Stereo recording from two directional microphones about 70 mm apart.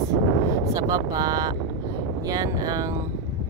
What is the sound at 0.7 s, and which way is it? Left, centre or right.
Speech, right.